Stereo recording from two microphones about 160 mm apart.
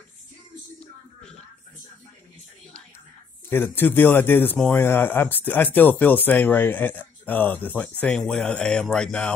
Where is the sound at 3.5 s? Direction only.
10° left (ahead or behind).